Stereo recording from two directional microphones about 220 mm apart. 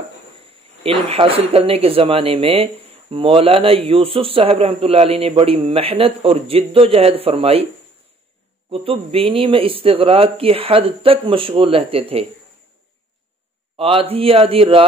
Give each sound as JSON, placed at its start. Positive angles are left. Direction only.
{"t": 0.8, "sound": "speech", "side_deg": -25}
{"t": 8.6, "sound": "speech", "side_deg": -25}
{"t": 13.7, "sound": "speech", "side_deg": -25}